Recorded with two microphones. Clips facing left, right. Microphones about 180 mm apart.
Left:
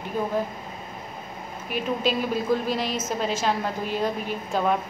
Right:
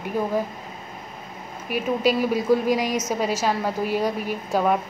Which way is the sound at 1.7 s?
10° right (ahead or behind).